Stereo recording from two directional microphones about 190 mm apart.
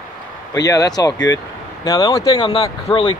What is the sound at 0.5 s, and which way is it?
Speech, 20° left (ahead or behind).